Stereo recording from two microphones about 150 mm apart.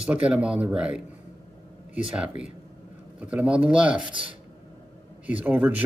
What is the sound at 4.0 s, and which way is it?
Speech, 35° right (ahead or behind).